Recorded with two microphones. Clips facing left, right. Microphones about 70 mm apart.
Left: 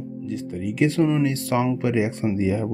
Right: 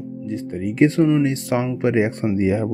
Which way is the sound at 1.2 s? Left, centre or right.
Right.